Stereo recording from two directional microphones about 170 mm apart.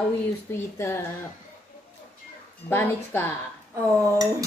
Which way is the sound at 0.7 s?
15° left (ahead or behind).